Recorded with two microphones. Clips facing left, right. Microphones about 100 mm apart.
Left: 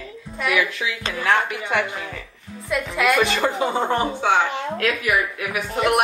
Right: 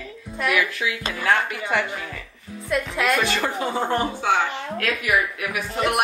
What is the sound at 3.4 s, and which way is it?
Speech, 25° left (ahead or behind).